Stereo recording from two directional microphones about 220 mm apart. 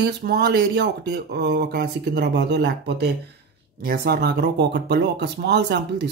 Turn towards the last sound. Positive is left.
turn(degrees=-50)  # may be behind; listen again after turning